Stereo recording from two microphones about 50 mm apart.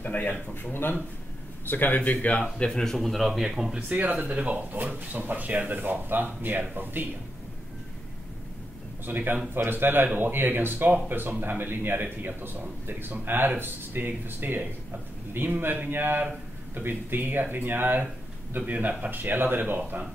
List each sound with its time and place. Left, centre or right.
0.0 s a man's voice: left
1.7 s a man's voice: left
2.6 s speech: centre
3.9 s speech: right
9.0 s a man's voice: right